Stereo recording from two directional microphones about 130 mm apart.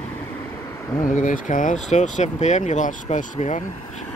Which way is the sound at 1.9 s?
65° left (ahead or behind).